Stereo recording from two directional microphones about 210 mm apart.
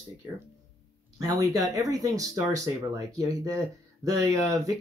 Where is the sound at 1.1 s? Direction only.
15° right (ahead or behind).